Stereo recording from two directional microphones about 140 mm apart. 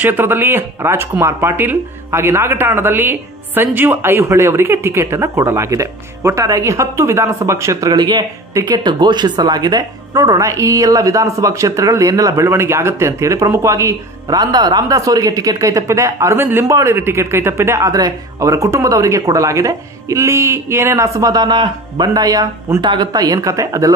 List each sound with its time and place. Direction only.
0.0 s speech: 15° right (ahead or behind)